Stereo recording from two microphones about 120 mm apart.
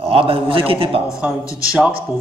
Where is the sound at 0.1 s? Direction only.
50° right (ahead or behind).